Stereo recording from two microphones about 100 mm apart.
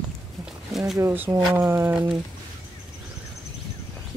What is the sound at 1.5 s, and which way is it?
Speech, 25° right (ahead or behind).